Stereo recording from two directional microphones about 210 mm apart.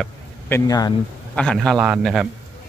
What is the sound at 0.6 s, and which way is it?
Speech, 15° left (ahead or behind).